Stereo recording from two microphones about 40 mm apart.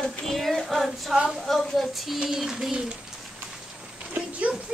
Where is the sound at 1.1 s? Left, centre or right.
Centre.